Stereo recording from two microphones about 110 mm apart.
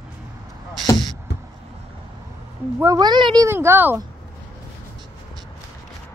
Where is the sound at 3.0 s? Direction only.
45° right (ahead or behind).